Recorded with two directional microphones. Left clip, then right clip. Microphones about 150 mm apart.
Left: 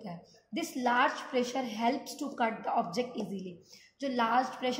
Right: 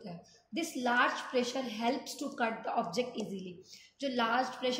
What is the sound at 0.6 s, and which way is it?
A woman's voice, 50° left (ahead or behind).